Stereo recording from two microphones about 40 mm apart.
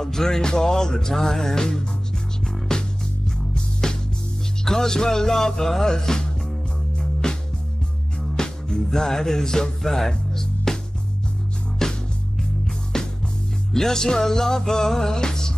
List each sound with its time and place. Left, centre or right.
0.0 s music: centre
8.4 s music: centre
8.9 s speech: centre
11.8 s music: centre